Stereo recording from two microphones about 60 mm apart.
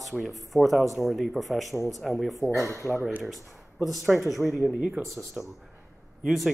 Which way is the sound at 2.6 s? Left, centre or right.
Left.